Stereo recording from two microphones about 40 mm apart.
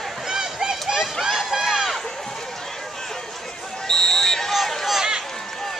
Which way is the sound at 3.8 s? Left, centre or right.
Centre.